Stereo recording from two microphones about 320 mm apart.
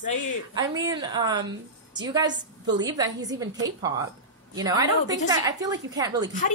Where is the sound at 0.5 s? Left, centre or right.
Centre.